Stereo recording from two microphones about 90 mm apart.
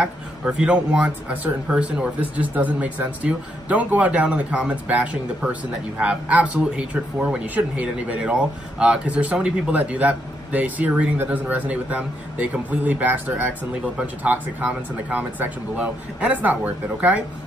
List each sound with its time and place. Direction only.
0.0 s speech: 10° right (ahead or behind)